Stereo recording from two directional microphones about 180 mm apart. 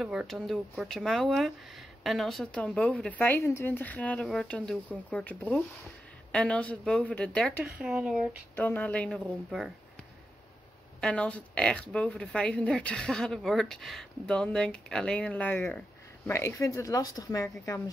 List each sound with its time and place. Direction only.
0.0 s speech: 5° right (ahead or behind)
7.7 s speech: 5° right (ahead or behind)
8.5 s speech: 10° left (ahead or behind)
11.0 s speech: 5° left (ahead or behind)